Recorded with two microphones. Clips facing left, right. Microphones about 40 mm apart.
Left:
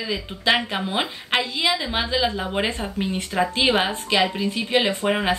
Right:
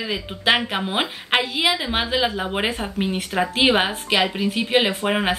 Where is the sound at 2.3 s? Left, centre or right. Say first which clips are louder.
Right 1 dB; centre.